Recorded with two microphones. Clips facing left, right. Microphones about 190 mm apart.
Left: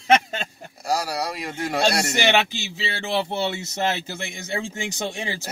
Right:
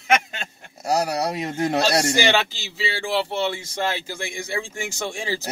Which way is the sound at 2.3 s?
20° left (ahead or behind).